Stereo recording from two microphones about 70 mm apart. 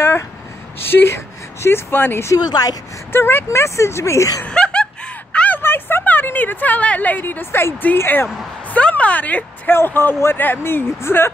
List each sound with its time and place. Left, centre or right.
0.7 s speech: left
2.3 s a woman's voice: left
3.1 s speech: left
3.4 s speech: left
4.5 s snicker: centre
5.6 s speech: left
8.6 s a sound: left
9.7 s speech: left